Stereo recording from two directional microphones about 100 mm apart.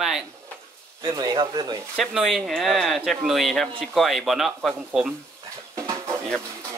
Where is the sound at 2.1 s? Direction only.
Centre (ahead or behind).